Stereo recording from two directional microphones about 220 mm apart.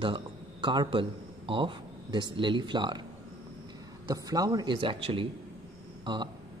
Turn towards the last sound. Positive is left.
turn(degrees=-20)  # may be behind; listen again after turning